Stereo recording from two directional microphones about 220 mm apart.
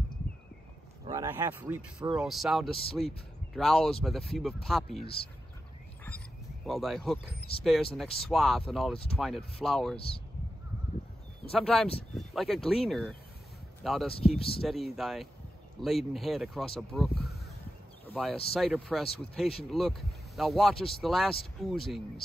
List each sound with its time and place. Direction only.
1.0 s speech: 15° right (ahead or behind)
2.7 s speech: 25° left (ahead or behind)
3.5 s speech: centre (ahead or behind)
6.0 s a sound: 5° left (ahead or behind)
7.6 s speech: centre (ahead or behind)
9.9 s speech: 25° left (ahead or behind)
11.5 s speech: 5° left (ahead or behind)